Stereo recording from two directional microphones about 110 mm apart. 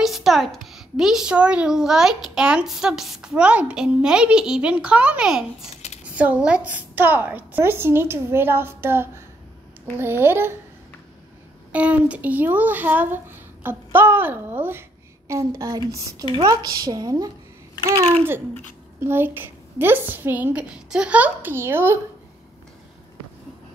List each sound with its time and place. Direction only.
0.0 s a woman's voice: centre (ahead or behind); by 10.5 s 20° right (ahead or behind)
11.7 s a woman's voice: 10° right (ahead or behind); by 17.3 s 35° right (ahead or behind)
18.9 s speech: 20° right (ahead or behind)